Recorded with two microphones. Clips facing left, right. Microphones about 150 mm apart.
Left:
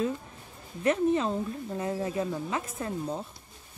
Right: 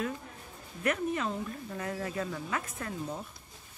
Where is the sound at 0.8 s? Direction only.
30° left (ahead or behind).